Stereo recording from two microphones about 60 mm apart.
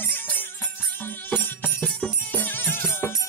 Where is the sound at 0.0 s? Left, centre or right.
Left.